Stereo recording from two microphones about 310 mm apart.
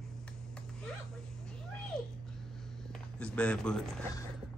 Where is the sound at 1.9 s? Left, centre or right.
Centre.